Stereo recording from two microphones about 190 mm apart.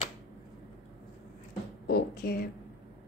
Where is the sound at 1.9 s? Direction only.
55° left (ahead or behind).